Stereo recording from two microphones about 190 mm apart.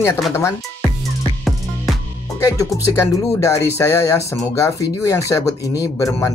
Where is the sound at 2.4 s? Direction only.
15° left (ahead or behind).